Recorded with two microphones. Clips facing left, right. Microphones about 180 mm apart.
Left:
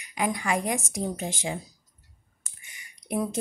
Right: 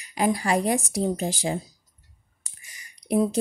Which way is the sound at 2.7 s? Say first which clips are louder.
Right 6 dB; 35° right (ahead or behind).